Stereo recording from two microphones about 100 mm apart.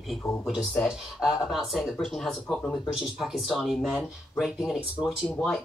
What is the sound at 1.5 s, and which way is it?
Speech, centre (ahead or behind).